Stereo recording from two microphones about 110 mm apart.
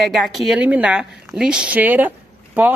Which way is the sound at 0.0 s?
Centre (ahead or behind).